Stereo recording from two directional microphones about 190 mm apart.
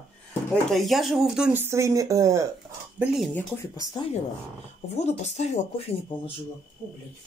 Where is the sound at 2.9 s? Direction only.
5° right (ahead or behind).